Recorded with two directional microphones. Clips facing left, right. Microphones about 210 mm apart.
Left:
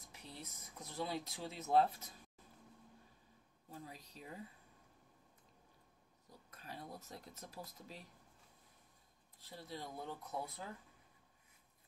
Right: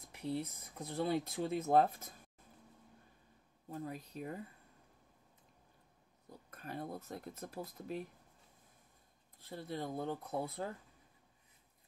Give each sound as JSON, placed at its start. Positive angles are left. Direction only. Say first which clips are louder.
{"t": 0.1, "sound": "speech", "louder": "right 14 dB", "side_deg": -60}
{"t": 3.7, "sound": "speech", "louder": "right 9 dB", "side_deg": -55}
{"t": 6.5, "sound": "speech", "louder": "right 7 dB", "side_deg": -55}
{"t": 9.4, "sound": "speech", "louder": "right 7 dB", "side_deg": -55}